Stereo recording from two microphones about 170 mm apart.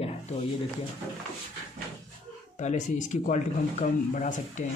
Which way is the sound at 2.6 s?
45° left (ahead or behind).